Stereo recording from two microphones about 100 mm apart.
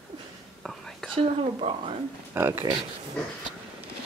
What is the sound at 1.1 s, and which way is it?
Speech, 80° right.